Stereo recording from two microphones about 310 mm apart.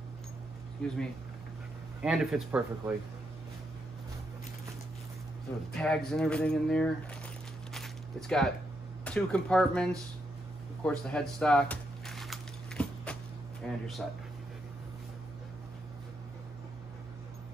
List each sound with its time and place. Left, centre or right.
0.8 s speech: centre
5.7 s speech: centre
7.7 s coin: centre
9.0 s speech: centre
10.8 s a sound: centre
13.6 s speech: centre